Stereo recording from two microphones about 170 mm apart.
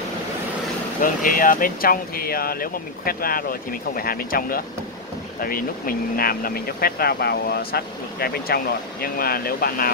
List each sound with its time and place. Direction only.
1.0 s speech: 55° left (ahead or behind)